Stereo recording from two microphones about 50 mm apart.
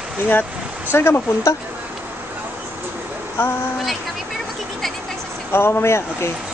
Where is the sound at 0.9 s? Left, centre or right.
Left.